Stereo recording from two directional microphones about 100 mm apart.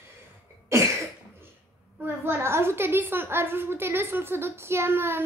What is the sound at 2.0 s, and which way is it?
A woman's voice, 25° right (ahead or behind).